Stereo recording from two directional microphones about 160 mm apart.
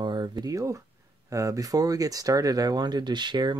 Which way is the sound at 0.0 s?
25° right (ahead or behind).